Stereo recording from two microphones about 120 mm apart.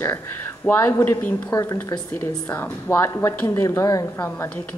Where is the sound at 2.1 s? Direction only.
15° left (ahead or behind).